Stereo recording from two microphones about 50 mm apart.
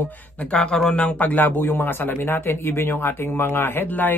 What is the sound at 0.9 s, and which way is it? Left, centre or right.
Speech, left.